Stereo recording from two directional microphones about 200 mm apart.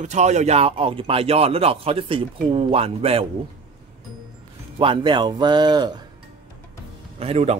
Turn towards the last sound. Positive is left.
turn(degrees=-30)  # may be behind; listen again after turning